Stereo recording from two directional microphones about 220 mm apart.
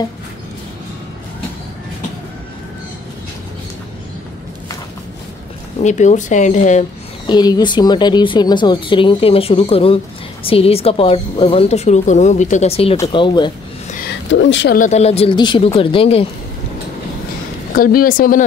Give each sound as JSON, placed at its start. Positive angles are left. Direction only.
{"t": 5.8, "sound": "speech", "side_deg": 35}
{"t": 7.2, "sound": "speech", "side_deg": 20}
{"t": 13.8, "sound": "a sound", "side_deg": 40}
{"t": 14.3, "sound": "speech", "side_deg": 55}
{"t": 14.8, "sound": "speech", "side_deg": 30}
{"t": 17.7, "sound": "speech", "side_deg": 40}